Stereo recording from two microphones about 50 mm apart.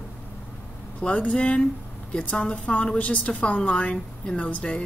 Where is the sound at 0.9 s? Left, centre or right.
Left.